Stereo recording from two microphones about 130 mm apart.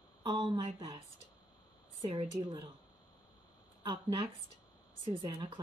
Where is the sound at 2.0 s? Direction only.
40° right (ahead or behind).